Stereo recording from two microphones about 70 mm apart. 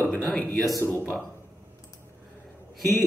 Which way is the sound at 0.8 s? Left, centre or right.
Left.